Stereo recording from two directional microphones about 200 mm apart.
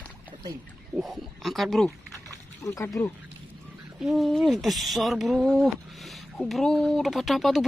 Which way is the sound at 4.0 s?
Centre (ahead or behind).